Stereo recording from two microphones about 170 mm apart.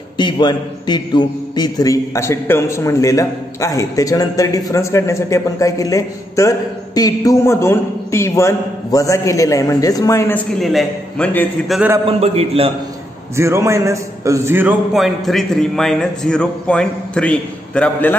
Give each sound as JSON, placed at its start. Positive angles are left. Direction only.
{"t": 0.2, "sound": "a man's voice", "side_deg": 25}
{"t": 10.6, "sound": "a man's voice", "side_deg": 0}
{"t": 12.1, "sound": "a man's voice", "side_deg": -35}
{"t": 13.4, "sound": "a man's voice", "side_deg": -15}
{"t": 15.0, "sound": "a man's voice", "side_deg": 0}